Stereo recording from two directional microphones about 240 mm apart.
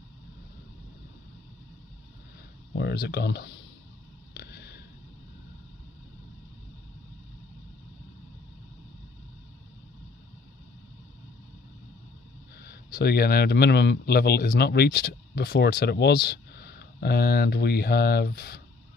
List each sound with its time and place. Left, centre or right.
2.7 s speech: left
4.3 s a sound: left
12.6 s speech: left